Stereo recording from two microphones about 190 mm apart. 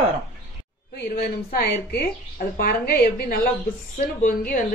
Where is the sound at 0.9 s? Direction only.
55° left (ahead or behind).